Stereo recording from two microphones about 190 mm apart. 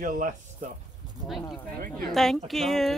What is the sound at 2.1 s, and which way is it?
Speech, centre (ahead or behind).